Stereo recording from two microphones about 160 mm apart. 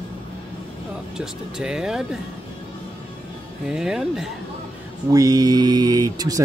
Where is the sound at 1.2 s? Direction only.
5° right (ahead or behind).